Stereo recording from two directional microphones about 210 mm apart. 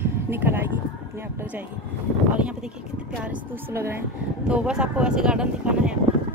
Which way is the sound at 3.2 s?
10° right (ahead or behind).